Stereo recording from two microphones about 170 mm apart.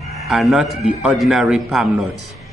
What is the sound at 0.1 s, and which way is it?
A man's voice, centre (ahead or behind).